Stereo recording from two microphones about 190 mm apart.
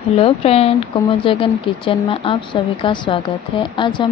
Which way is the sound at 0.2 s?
30° left (ahead or behind).